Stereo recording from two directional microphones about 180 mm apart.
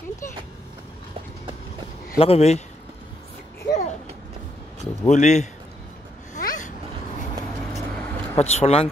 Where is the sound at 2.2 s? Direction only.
35° left (ahead or behind).